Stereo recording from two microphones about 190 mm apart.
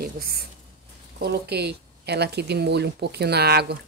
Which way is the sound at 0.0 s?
50° right (ahead or behind).